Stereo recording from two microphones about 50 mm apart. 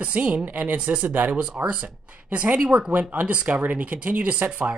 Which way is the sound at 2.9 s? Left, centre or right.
Right.